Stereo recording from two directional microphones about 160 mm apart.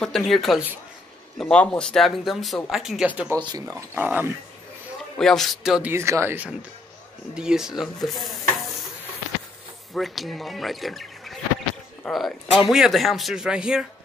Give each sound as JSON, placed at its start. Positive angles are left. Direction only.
{"t": 0.0, "sound": "speech", "side_deg": 0}
{"t": 3.3, "sound": "speech", "side_deg": -20}
{"t": 3.9, "sound": "speech", "side_deg": -10}
{"t": 5.2, "sound": "speech", "side_deg": 0}
{"t": 9.9, "sound": "speech", "side_deg": 0}